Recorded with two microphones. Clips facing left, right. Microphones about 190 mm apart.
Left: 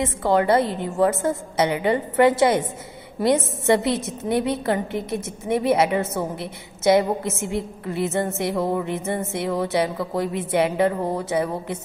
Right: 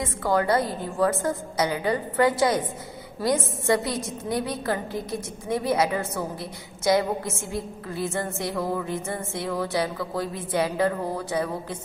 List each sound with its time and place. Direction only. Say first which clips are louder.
0.0 s a woman's voice: left 4 dB; 25° left (ahead or behind)